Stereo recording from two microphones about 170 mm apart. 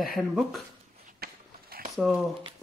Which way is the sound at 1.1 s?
60° right (ahead or behind).